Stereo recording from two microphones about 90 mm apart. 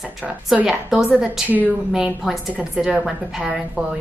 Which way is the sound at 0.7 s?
5° right (ahead or behind).